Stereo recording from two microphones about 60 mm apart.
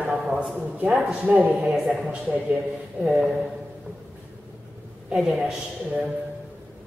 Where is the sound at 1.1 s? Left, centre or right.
Right.